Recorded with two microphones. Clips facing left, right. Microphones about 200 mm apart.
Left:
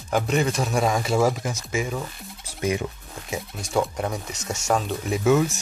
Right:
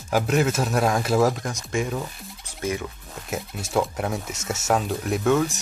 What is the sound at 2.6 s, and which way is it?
Speech, 15° left (ahead or behind).